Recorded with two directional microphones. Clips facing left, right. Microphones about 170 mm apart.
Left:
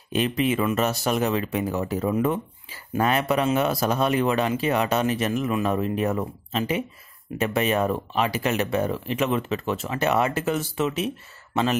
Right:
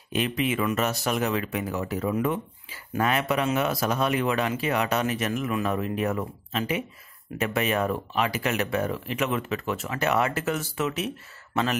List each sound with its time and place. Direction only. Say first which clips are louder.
0.4 s speech: left 3 dB; 35° left (ahead or behind)